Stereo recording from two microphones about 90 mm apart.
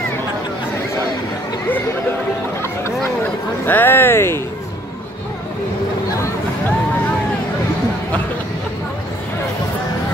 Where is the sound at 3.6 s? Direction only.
25° left (ahead or behind).